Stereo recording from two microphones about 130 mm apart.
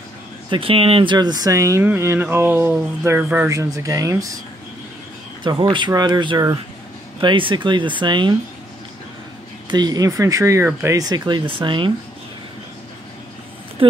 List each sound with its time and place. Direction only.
0.5 s speech: 45° right (ahead or behind); by 4.4 s 25° right (ahead or behind)
5.4 s speech: 40° right (ahead or behind)
9.7 s speech: 30° right (ahead or behind)
13.8 s speech: 40° right (ahead or behind)